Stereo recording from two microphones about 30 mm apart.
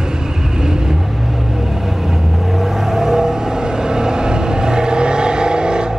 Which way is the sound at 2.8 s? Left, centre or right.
Centre.